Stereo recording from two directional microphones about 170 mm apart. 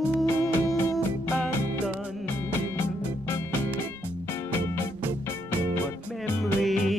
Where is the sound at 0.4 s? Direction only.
15° left (ahead or behind).